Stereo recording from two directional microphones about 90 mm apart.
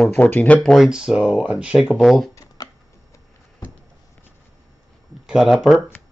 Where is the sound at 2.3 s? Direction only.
40° left (ahead or behind).